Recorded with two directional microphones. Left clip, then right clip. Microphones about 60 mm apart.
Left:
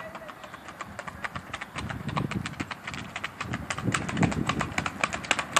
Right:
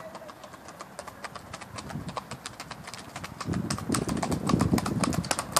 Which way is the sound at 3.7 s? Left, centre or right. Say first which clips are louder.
Left 1 dB; centre.